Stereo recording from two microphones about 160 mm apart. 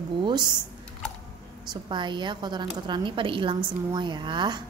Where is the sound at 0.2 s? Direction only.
30° right (ahead or behind).